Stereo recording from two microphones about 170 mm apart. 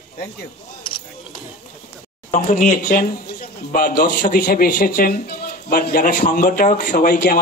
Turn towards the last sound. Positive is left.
turn(degrees=55)  # may be behind; listen again after turning